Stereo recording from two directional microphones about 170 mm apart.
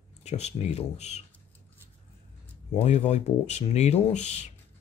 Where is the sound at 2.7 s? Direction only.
40° left (ahead or behind).